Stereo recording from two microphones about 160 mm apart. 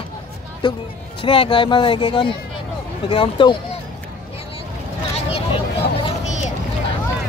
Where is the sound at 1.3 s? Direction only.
35° left (ahead or behind).